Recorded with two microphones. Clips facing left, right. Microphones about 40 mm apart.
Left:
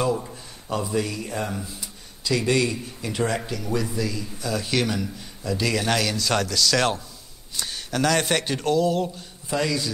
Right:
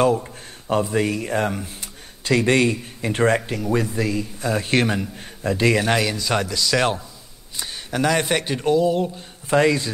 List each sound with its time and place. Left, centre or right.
0.1 s a man's voice: right
9.5 s a man's voice: right